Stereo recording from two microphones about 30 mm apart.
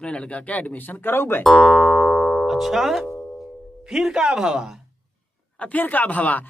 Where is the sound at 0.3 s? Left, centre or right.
Left.